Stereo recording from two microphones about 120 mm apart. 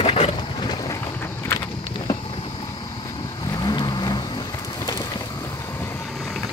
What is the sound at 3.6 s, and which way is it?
Vehicle, 40° left (ahead or behind).